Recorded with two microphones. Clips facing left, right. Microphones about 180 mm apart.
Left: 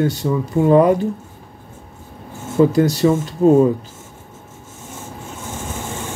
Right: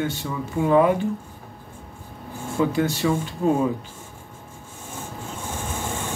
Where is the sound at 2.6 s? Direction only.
40° left (ahead or behind).